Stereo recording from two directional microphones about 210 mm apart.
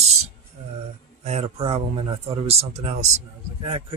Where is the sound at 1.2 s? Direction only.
30° right (ahead or behind).